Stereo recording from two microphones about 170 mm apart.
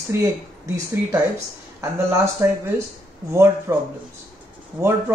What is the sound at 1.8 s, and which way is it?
Speech, 15° right (ahead or behind).